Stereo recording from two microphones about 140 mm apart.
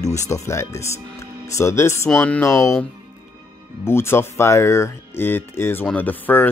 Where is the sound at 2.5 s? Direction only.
20° left (ahead or behind).